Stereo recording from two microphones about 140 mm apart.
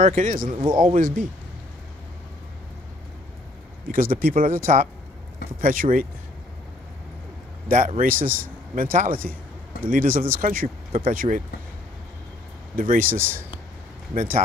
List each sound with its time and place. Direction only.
0.0 s speech: 65° right (ahead or behind)
3.9 s speech: 80° right
7.6 s speech: 70° right (ahead or behind)
12.7 s speech: 75° right (ahead or behind)